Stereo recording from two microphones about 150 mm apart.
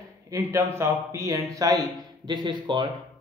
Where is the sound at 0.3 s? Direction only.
20° right (ahead or behind).